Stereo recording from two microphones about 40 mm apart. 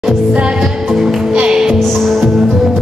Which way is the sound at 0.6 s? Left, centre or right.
Centre.